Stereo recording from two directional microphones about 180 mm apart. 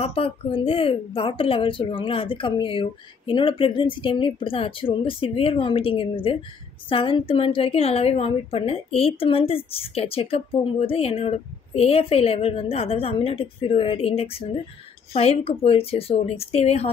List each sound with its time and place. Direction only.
0.0 s a woman's voice: 35° left (ahead or behind)